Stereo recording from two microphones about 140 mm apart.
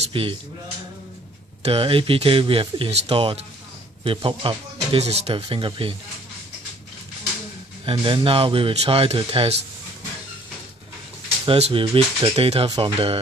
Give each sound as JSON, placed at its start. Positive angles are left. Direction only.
{"t": 0.1, "sound": "speech", "side_deg": -40}
{"t": 1.6, "sound": "speech", "side_deg": -45}
{"t": 7.8, "sound": "speech", "side_deg": -40}
{"t": 11.4, "sound": "speech", "side_deg": -45}